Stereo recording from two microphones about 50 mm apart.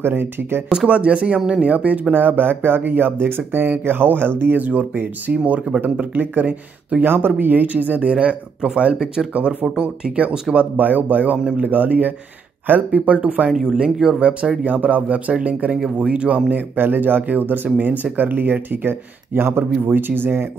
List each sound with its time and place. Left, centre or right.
0.0 s speech: right
0.8 s speech: right
2.1 s speech: right
5.3 s speech: right
7.0 s speech: right
8.1 s speech: centre
9.3 s speech: right
13.5 s speech: centre
14.6 s speech: right
19.3 s speech: right
19.9 s speech: right